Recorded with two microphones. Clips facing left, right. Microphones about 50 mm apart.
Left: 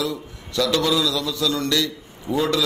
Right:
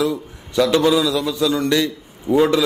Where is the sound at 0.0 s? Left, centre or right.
Right.